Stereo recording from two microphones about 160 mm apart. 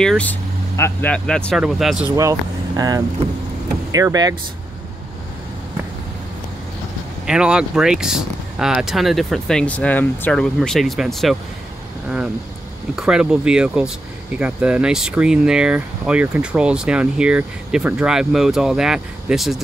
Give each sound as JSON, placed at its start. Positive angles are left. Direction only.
{"t": 0.0, "sound": "speech", "side_deg": 5}
{"t": 3.9, "sound": "speech", "side_deg": -20}
{"t": 7.2, "sound": "speech", "side_deg": -5}
{"t": 12.9, "sound": "speech", "side_deg": -5}